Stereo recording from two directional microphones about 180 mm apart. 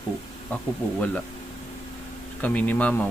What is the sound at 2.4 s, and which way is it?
Speech, 10° left (ahead or behind).